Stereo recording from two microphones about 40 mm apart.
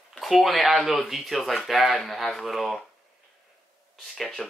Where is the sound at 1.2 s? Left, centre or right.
Centre.